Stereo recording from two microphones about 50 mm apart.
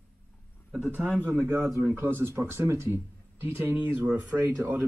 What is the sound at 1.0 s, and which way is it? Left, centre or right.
A man's voice, right.